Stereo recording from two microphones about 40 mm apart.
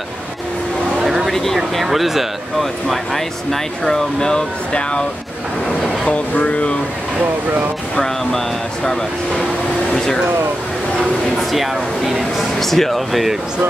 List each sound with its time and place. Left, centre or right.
1.0 s a sound: centre
1.3 s speech: centre
1.8 s speech: centre; by 5.0 s left
6.4 s speech: left
9.9 s speech: centre
11.5 s speech: centre
12.5 s speech: centre